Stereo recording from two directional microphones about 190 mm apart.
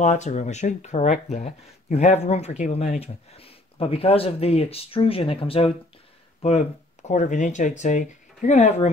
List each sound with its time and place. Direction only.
0.0 s speech: 40° left (ahead or behind)